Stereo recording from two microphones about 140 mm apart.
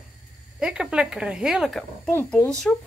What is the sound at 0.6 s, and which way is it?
Speech, 5° right (ahead or behind).